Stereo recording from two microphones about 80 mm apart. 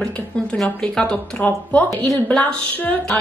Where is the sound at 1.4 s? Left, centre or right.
Left.